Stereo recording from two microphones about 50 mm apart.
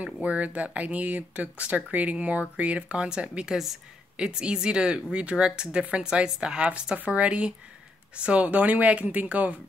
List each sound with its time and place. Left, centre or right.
0.0 s speech: right